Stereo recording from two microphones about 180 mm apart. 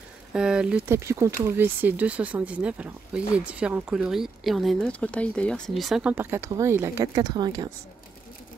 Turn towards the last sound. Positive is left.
turn(degrees=-20)  # may be behind; listen again after turning